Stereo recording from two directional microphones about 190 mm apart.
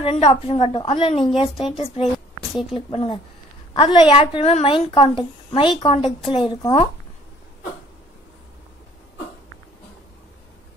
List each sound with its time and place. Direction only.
0.0 s a woman's voice: 35° left (ahead or behind)
2.1 s a sound: centre (ahead or behind)
2.9 s a woman's voice: 30° left (ahead or behind)